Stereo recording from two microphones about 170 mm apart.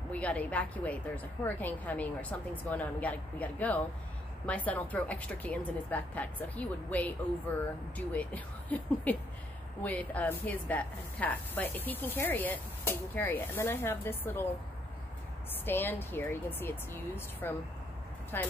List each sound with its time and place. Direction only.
0.1 s speech: 10° left (ahead or behind)
8.1 s speech: 10° left (ahead or behind)
15.5 s speech: 10° left (ahead or behind)